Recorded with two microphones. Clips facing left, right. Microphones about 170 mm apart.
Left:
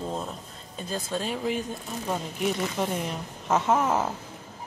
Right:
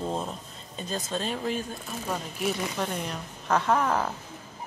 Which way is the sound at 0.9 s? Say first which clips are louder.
Left 1 dB; 10° left (ahead or behind).